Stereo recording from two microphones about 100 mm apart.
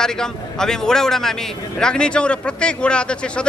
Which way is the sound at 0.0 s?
5° left (ahead or behind).